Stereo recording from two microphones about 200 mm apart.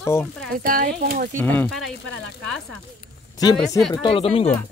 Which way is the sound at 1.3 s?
10° left (ahead or behind).